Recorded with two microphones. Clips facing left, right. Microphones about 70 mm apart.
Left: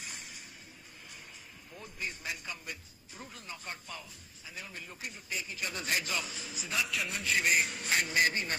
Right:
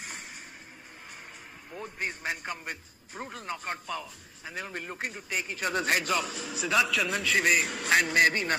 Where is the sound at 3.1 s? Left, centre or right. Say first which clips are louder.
Right 9 dB; right.